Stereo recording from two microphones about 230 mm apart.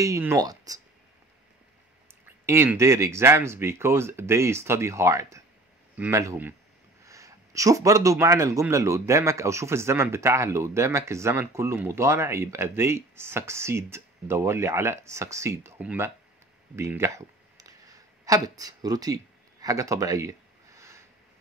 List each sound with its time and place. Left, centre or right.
0.0 s speech: centre
2.2 s speech: centre
16.7 s clicking: centre